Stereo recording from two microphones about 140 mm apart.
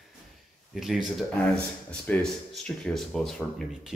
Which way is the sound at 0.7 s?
Centre (ahead or behind).